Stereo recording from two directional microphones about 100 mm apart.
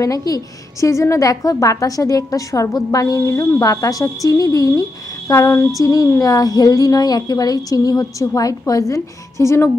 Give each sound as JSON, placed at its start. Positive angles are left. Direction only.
{"t": 0.0, "sound": "a woman's voice", "side_deg": 35}
{"t": 5.3, "sound": "a sound", "side_deg": 30}
{"t": 5.8, "sound": "a woman's voice", "side_deg": 35}